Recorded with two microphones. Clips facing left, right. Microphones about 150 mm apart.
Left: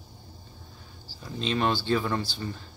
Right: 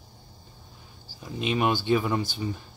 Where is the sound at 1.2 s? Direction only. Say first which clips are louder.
Right 1 dB; 15° right (ahead or behind).